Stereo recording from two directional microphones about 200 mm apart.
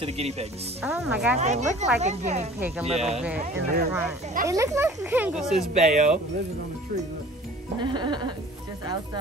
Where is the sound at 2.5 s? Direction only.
10° right (ahead or behind).